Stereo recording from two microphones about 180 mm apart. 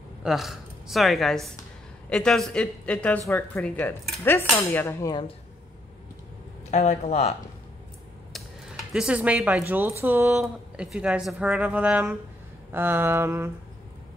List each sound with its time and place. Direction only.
0.2 s a woman's voice: centre (ahead or behind)
6.7 s speech: 40° left (ahead or behind)
8.3 s speech: centre (ahead or behind)
12.7 s a sound: 10° right (ahead or behind)